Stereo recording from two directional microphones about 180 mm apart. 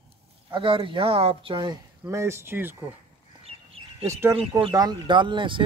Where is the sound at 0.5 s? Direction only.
25° right (ahead or behind); by 2.8 s 10° right (ahead or behind).